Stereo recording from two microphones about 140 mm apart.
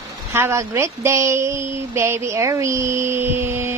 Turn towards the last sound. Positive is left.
turn(degrees=-20)  # may be behind; listen again after turning